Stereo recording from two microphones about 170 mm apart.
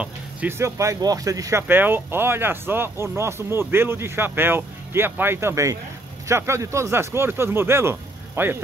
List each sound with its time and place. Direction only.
0.0 s speech: 10° right (ahead or behind)